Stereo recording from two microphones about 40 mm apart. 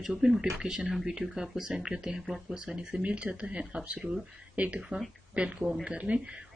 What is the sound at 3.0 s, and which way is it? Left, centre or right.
Speech, right.